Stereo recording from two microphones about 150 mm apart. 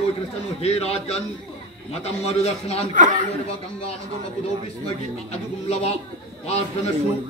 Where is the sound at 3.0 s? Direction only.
60° right (ahead or behind).